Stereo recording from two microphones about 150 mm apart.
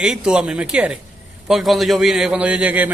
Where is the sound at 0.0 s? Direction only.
5° right (ahead or behind).